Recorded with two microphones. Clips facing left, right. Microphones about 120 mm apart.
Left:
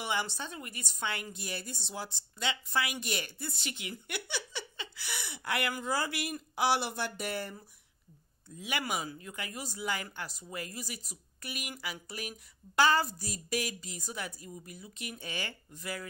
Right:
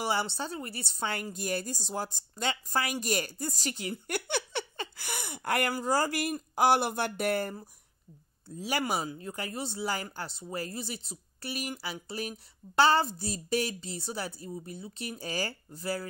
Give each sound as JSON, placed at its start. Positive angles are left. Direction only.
{"t": 0.0, "sound": "speech", "side_deg": -35}
{"t": 4.1, "sound": "speech", "side_deg": -55}
{"t": 8.5, "sound": "speech", "side_deg": -35}